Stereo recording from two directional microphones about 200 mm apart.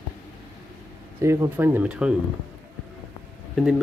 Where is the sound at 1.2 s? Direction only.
15° right (ahead or behind).